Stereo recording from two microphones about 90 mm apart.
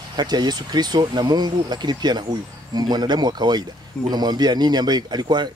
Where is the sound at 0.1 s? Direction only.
50° right (ahead or behind).